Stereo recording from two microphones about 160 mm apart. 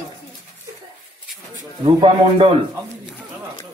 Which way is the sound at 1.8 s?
35° right (ahead or behind).